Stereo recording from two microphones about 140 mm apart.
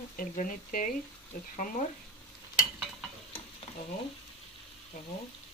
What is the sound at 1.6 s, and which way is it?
Speech, 70° left (ahead or behind).